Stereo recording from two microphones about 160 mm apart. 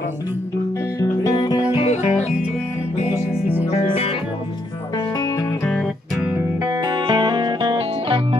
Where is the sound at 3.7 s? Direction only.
40° left (ahead or behind).